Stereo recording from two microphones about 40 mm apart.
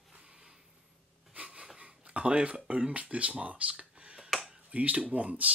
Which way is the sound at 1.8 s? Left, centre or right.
Right.